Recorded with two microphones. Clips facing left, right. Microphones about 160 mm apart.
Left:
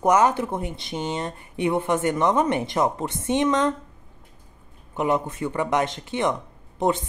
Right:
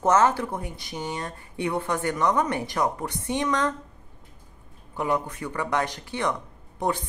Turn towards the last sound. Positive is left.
turn(degrees=20)  # may be behind; listen again after turning